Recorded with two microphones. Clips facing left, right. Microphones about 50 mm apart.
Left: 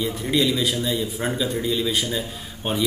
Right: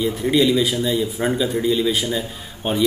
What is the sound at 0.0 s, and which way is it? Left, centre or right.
Speech, centre.